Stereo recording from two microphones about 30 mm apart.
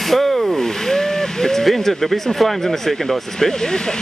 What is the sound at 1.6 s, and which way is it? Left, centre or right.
Speech, centre.